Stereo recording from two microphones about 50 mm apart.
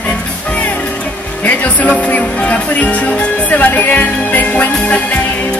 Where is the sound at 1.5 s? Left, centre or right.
Left.